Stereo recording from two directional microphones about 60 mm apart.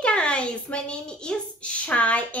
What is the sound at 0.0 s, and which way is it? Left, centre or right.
A woman's voice, centre.